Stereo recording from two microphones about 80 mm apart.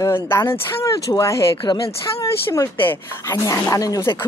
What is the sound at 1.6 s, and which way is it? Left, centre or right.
Speech, left.